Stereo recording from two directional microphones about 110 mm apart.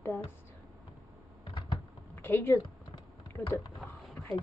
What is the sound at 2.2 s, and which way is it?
Speech, 20° left (ahead or behind).